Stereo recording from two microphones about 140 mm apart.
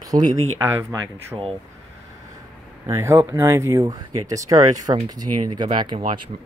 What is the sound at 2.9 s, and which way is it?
Speech, 20° right (ahead or behind).